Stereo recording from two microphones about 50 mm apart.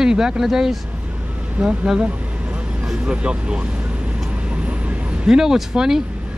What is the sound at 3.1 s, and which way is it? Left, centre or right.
Speech, right.